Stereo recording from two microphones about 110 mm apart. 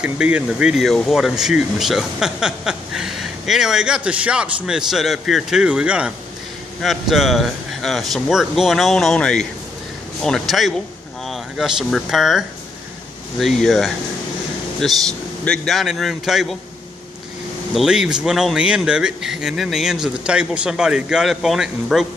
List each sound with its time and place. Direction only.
0.0 s speech: 10° right (ahead or behind)
17.7 s speech: 5° right (ahead or behind)